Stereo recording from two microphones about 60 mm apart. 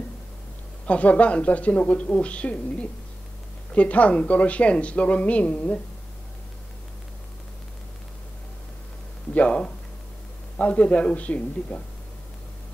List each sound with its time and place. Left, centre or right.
0.8 s speech: left
9.3 s speech: left